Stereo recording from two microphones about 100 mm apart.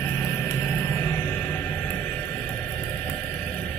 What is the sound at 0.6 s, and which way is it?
Music, 20° left (ahead or behind).